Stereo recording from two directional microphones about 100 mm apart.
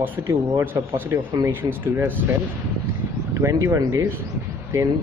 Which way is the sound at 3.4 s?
30° right (ahead or behind).